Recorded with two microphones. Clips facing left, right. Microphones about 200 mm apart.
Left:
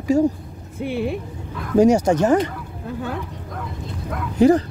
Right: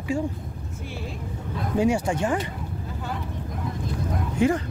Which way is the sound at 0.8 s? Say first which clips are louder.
Left 13 dB; 60° left (ahead or behind).